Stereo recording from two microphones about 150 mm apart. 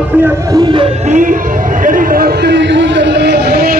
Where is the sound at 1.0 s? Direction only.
60° right (ahead or behind); by 2.3 s 75° right (ahead or behind).